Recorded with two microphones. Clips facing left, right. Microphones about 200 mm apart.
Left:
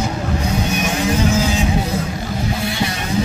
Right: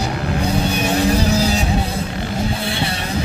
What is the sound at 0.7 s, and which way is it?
Vehicle, 35° right (ahead or behind).